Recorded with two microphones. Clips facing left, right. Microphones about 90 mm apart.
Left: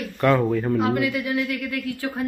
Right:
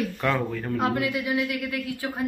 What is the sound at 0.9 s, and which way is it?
A man's voice, 25° right (ahead or behind).